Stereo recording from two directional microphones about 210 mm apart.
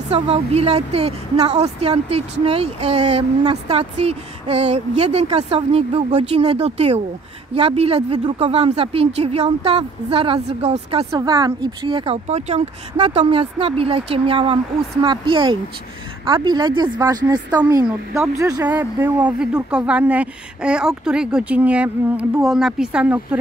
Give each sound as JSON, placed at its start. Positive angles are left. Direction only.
{"t": 0.1, "sound": "speech", "side_deg": -30}
{"t": 11.1, "sound": "speech", "side_deg": -15}
{"t": 17.8, "sound": "speech", "side_deg": -5}